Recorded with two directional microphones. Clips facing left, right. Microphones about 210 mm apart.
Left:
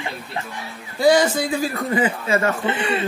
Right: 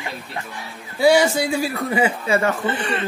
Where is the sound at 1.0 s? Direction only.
10° right (ahead or behind).